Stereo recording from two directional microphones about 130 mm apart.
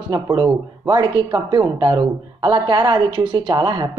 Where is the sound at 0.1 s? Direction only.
30° right (ahead or behind).